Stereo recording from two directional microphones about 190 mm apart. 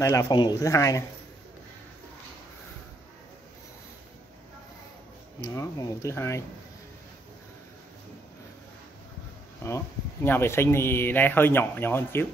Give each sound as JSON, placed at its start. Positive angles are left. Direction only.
{"t": 0.0, "sound": "speech", "side_deg": 15}
{"t": 5.4, "sound": "speech", "side_deg": 15}
{"t": 9.6, "sound": "speech", "side_deg": 15}